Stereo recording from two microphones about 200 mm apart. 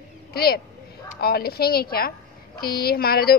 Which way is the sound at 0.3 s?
50° left (ahead or behind).